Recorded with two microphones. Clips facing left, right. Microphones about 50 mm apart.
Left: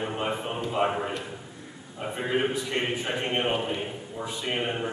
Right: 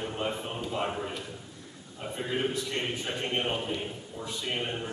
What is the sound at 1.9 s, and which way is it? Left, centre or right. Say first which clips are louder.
A man's voice: left 5 dB; left.